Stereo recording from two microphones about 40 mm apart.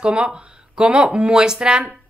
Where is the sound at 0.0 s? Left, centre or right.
Right.